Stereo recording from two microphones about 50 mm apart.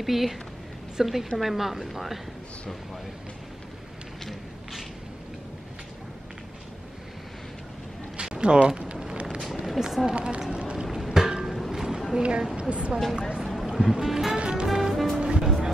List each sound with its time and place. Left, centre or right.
0.0 s a woman's voice: centre
8.2 s a sound: centre
9.5 s a sound: centre
10.1 s speech: right
10.4 s a sound: centre
11.0 s music: centre
12.2 s speech: centre
13.4 s boat: centre
13.9 s speech: centre
14.4 s music: centre
14.7 s music: centre